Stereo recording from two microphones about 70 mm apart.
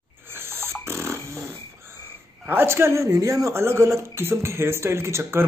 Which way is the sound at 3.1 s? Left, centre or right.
Right.